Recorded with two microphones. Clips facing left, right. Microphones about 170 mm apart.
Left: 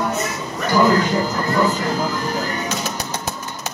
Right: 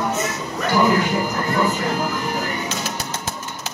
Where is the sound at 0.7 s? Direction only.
15° right (ahead or behind).